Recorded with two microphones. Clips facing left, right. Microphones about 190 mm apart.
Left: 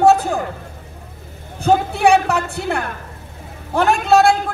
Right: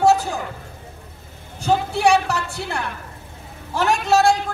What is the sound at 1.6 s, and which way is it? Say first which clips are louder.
A man's voice: left 3 dB; 55° left (ahead or behind).